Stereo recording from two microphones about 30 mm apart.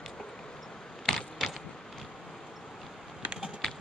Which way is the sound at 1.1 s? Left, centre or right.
Centre.